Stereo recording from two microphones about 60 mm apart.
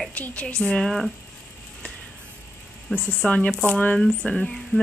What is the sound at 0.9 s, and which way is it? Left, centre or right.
Speech, centre.